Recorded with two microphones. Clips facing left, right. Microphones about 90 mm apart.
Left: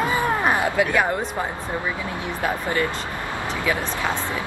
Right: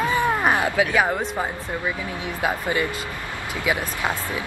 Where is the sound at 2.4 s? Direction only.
15° right (ahead or behind).